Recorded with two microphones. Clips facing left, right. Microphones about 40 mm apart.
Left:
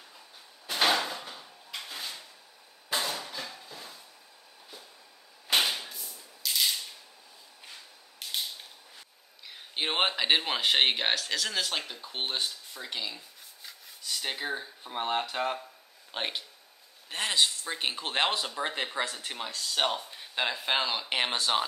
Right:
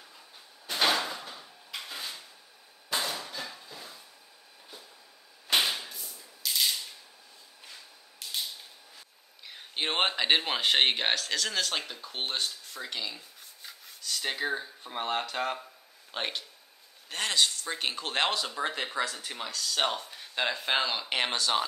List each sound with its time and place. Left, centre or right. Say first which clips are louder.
0.7 s drawer open or close: left 1 dB; centre
2.9 s hammer: even; centre
5.5 s whip: even; centre
9.5 s speech: even; centre
19.7 s speech: left 1 dB; centre